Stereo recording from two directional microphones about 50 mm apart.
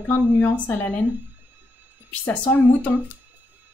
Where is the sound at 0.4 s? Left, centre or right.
Left.